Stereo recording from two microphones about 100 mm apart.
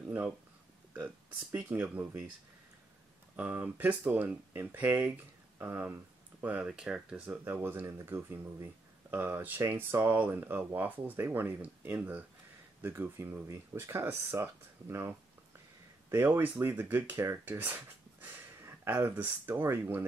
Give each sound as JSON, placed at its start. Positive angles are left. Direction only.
{"t": 0.0, "sound": "speech", "side_deg": -20}
{"t": 3.3, "sound": "speech", "side_deg": -15}
{"t": 7.4, "sound": "speech", "side_deg": -20}